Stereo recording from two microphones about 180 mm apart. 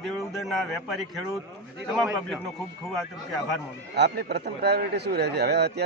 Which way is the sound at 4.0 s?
65° right (ahead or behind).